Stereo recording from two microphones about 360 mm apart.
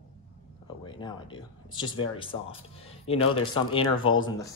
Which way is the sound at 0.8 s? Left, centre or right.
Centre.